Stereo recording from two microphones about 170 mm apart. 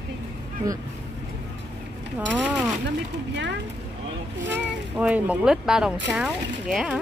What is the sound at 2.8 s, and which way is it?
Speech, 90° right.